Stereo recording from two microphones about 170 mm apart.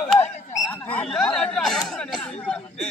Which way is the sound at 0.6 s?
5° left (ahead or behind).